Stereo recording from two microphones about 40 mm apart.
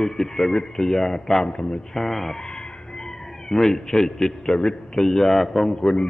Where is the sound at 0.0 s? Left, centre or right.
Centre.